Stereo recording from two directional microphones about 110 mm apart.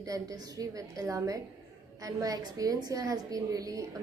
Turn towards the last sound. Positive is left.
turn(degrees=-30)  # may be behind; listen again after turning